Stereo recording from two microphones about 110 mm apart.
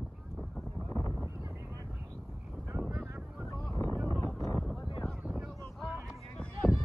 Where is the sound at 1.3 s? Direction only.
25° right (ahead or behind).